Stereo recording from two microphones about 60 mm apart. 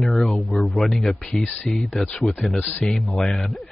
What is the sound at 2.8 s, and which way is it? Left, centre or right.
Speech, centre.